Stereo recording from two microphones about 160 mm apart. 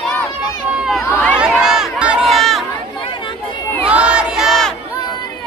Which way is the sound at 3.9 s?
5° right (ahead or behind).